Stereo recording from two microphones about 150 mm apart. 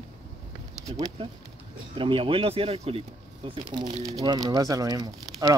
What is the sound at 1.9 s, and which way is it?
Speech, 35° right (ahead or behind).